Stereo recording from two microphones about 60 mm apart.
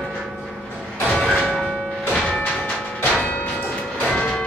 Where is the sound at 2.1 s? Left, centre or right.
Centre.